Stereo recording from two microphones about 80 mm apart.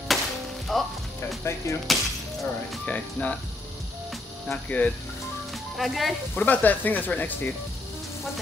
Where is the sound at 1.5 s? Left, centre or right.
Left.